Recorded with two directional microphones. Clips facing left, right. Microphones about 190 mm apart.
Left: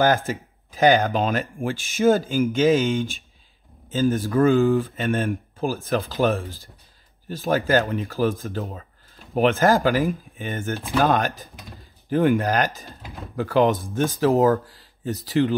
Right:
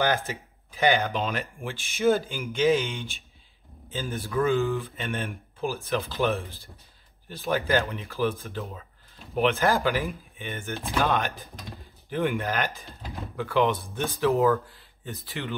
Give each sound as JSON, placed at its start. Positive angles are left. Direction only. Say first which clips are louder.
{"t": 0.3, "sound": "speech", "louder": "left 7 dB", "side_deg": 45}
{"t": 13.0, "sound": "speech", "louder": "right 2 dB", "side_deg": 0}
{"t": 13.4, "sound": "speech", "louder": "left 5 dB", "side_deg": 40}